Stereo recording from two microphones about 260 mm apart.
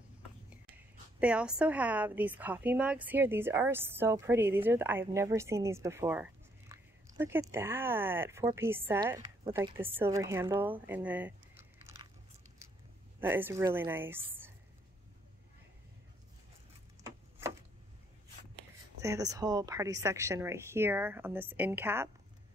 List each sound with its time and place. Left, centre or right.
1.2 s a woman's voice: centre
13.2 s a woman's voice: centre
18.9 s a woman's voice: centre